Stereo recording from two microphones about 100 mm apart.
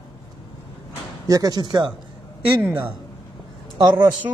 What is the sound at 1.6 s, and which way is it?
Speech, 50° right (ahead or behind).